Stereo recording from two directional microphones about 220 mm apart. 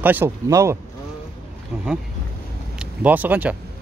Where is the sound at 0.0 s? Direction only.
10° right (ahead or behind).